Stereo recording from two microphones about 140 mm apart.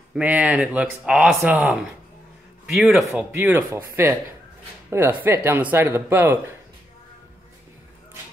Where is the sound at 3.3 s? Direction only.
15° right (ahead or behind).